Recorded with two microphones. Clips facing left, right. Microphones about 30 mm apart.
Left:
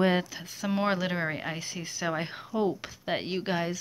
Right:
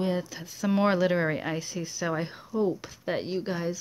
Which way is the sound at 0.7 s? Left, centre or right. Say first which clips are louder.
Right 4 dB; centre.